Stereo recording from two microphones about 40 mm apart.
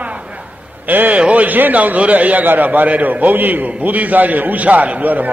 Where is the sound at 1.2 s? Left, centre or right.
Right.